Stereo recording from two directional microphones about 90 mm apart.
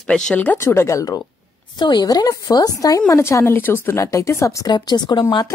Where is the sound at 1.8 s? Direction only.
55° left (ahead or behind).